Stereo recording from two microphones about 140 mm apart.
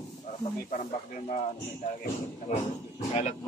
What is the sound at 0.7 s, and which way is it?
Speech, 65° left (ahead or behind).